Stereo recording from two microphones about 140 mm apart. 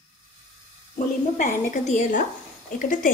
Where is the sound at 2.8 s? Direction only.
75° left (ahead or behind).